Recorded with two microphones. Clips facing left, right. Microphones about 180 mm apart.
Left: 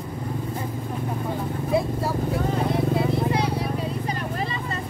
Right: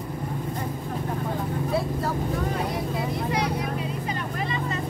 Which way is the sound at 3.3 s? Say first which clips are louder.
Left 2 dB; 30° left (ahead or behind).